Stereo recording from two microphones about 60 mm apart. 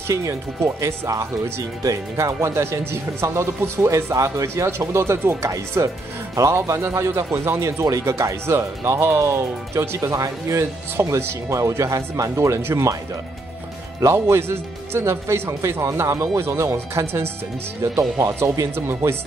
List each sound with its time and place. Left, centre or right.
0.1 s speech: right
4.6 s speech: right
5.8 s speech: right
10.6 s speech: right
14.0 s speech: right